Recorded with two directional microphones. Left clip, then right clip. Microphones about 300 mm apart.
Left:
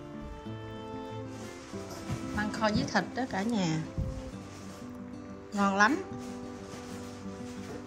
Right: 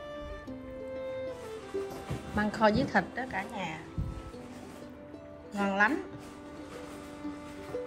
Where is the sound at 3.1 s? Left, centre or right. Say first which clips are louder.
Left 3 dB; centre.